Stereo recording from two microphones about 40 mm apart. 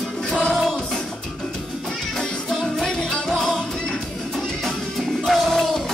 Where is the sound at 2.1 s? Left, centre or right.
Centre.